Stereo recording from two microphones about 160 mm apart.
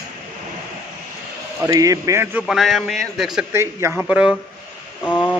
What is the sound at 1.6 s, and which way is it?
Speech, 20° right (ahead or behind).